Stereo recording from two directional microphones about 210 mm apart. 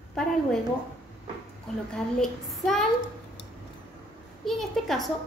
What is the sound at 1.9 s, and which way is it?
Speech, centre (ahead or behind).